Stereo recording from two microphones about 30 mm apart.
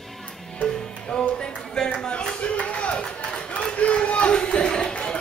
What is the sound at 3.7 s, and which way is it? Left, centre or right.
Crowd, left.